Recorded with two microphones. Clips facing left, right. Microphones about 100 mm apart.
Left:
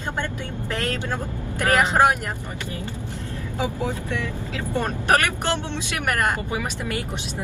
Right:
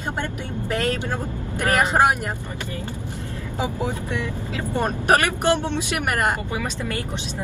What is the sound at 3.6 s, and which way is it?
Speech, 20° right (ahead or behind).